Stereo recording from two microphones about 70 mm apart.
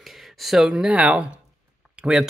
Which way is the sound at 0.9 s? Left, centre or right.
Centre.